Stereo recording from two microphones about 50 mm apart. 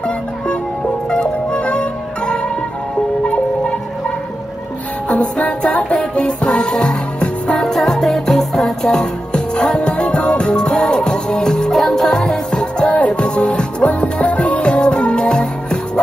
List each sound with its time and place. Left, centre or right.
1.1 s music: left
5.0 s music: left
12.9 s music: left